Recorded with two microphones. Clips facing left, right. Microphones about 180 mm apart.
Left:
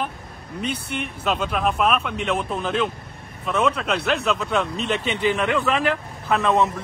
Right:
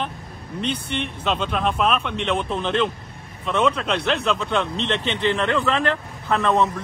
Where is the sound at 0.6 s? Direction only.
10° left (ahead or behind).